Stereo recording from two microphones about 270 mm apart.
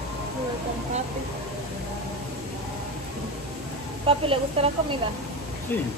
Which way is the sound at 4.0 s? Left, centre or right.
Right.